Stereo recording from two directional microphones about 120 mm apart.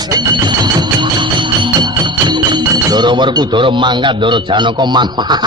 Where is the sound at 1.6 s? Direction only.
40° right (ahead or behind).